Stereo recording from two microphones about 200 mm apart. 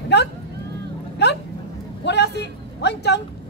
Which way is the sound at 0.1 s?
55° left (ahead or behind).